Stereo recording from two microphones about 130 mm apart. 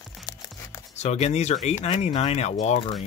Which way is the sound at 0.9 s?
60° left (ahead or behind).